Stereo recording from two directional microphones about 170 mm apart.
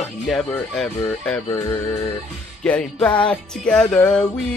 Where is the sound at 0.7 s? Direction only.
10° left (ahead or behind).